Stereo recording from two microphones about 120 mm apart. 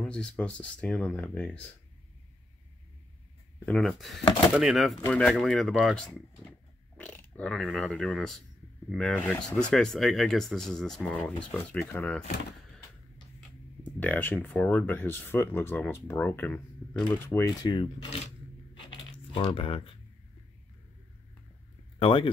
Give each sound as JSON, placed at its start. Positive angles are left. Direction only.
{"t": 0.0, "sound": "speech", "side_deg": 10}
{"t": 3.7, "sound": "speech", "side_deg": 0}
{"t": 5.0, "sound": "speech", "side_deg": 10}
{"t": 13.8, "sound": "speech", "side_deg": 15}
{"t": 17.6, "sound": "coin", "side_deg": 45}
{"t": 18.8, "sound": "a sound", "side_deg": 45}
{"t": 21.9, "sound": "speech", "side_deg": 45}